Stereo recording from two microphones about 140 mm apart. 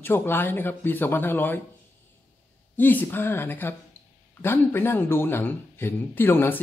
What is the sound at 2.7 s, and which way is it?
Speech, 15° left (ahead or behind).